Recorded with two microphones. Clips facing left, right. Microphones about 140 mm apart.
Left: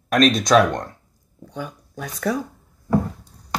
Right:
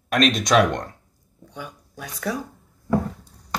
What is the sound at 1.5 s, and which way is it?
Speech, 45° left (ahead or behind).